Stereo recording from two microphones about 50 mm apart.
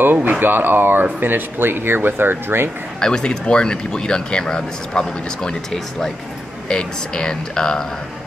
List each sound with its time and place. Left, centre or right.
0.0 s speech: right
3.0 s speech: centre